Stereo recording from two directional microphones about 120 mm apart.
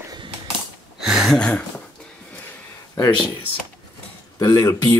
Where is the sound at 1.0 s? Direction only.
5° right (ahead or behind).